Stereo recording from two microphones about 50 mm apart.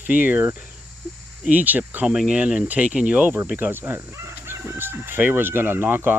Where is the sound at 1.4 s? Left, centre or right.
Right.